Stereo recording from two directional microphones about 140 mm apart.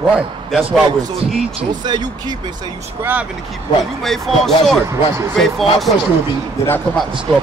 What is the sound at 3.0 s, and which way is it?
Speech, 10° right (ahead or behind).